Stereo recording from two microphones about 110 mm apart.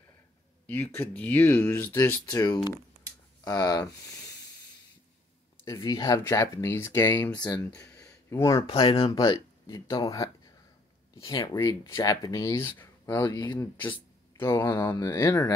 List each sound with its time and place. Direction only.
0.7 s speech: 15° left (ahead or behind)
2.2 s speech: 35° left (ahead or behind)
5.7 s speech: 30° left (ahead or behind)
7.8 s a sound: 25° left (ahead or behind)
9.2 s speech: 35° left (ahead or behind)
13.3 s speech: 35° left (ahead or behind)
13.8 s speech: 20° left (ahead or behind)